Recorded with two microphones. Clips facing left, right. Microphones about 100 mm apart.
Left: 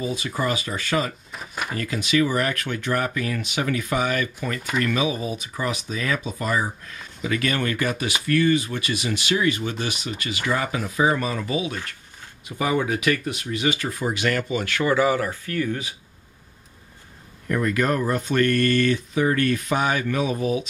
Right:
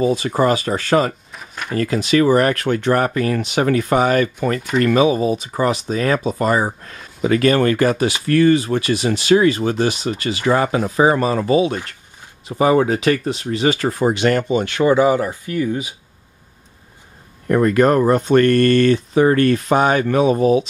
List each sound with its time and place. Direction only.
0.1 s speech: 40° right (ahead or behind)
1.3 s drawer open or close: centre (ahead or behind)
1.8 s speech: 40° right (ahead or behind)
14.1 s speech: 30° right (ahead or behind)
17.5 s speech: 40° right (ahead or behind)